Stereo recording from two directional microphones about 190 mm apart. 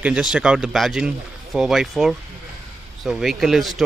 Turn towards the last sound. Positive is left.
turn(degrees=0)  # may be behind; listen again after turning